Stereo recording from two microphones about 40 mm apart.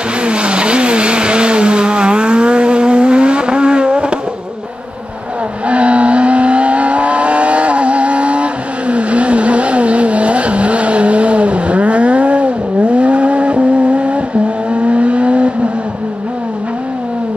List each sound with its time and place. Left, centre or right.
0.2 s vehicle: right
5.7 s vehicle: right